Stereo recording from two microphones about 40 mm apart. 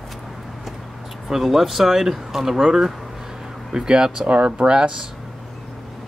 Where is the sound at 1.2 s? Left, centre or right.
Centre.